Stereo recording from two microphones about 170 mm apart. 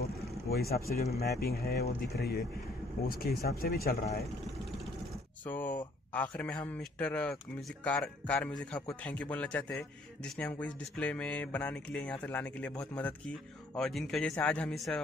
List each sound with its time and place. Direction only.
0.0 s vehicle: 65° left (ahead or behind)
1.2 s speech: 65° left (ahead or behind)
5.4 s a man's voice: 10° left (ahead or behind)